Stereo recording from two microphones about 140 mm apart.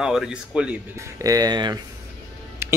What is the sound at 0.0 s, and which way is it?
Speech, 5° right (ahead or behind).